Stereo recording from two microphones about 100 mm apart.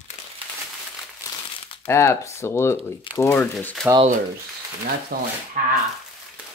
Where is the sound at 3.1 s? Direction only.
60° left (ahead or behind).